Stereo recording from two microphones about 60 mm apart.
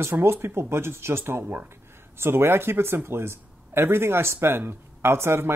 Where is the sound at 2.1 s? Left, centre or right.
Right.